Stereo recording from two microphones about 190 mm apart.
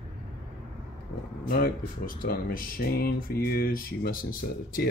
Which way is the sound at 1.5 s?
50° left (ahead or behind).